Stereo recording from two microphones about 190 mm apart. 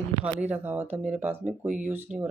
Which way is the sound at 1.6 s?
40° right (ahead or behind).